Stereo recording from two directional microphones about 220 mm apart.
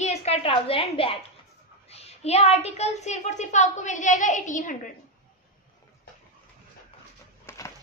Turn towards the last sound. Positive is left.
turn(degrees=15)  # may be behind; listen again after turning